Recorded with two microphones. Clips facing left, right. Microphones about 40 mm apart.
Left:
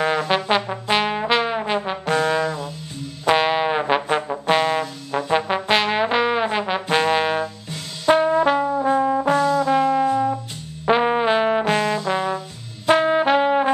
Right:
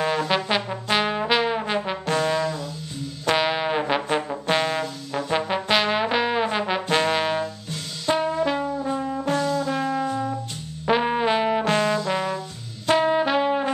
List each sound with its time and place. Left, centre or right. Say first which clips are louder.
0.0 s brass instrument: left 3 dB; centre
0.5 s trombone: left 3 dB; centre
2.1 s trombone: left 3 dB; left
3.3 s brass instrument: left 4 dB; centre; by 9.9 s left
10.0 s music: left 6 dB; left
10.9 s trombone: left 3 dB; centre
12.8 s brass instrument: left 3 dB; centre
13.3 s trumpet: left 4 dB; left